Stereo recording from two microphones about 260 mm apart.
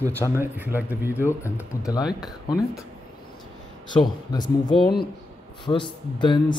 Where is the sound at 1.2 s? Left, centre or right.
Centre.